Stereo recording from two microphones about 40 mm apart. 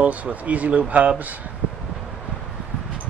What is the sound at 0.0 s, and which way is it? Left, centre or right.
Speech, right.